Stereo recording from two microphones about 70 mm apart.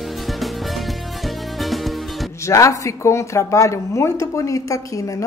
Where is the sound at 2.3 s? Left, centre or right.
Left.